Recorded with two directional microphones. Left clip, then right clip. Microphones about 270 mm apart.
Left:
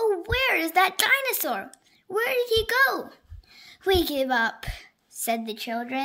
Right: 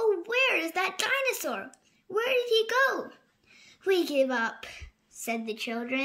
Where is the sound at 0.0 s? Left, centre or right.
Left.